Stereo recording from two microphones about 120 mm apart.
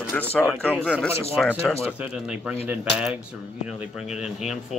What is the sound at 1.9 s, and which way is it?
Speech, 10° right (ahead or behind).